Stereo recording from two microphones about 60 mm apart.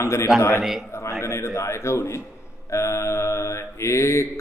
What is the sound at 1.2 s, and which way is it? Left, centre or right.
Mantra, left.